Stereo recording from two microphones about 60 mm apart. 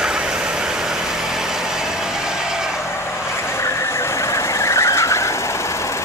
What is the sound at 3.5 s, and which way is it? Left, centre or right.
Vehicle, left.